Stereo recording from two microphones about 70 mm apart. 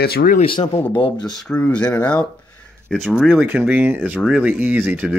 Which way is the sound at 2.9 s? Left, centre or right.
Centre.